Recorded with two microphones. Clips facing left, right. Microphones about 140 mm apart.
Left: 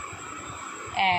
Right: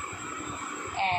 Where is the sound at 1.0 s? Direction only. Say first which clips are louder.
Left 5 dB; 90° left.